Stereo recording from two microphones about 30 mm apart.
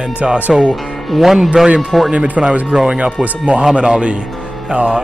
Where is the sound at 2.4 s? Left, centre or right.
Right.